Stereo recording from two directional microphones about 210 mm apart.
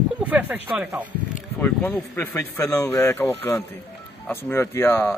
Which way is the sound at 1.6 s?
10° left (ahead or behind).